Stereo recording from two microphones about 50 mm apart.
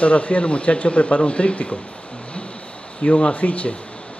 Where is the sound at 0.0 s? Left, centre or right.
Left.